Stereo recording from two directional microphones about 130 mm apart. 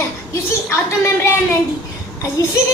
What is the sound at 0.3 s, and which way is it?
A woman's voice, 20° left (ahead or behind).